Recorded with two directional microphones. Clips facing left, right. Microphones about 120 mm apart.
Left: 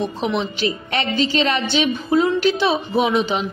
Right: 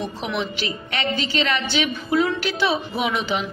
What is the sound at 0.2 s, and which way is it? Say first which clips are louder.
A woman's voice: left 5 dB; 30° left (ahead or behind).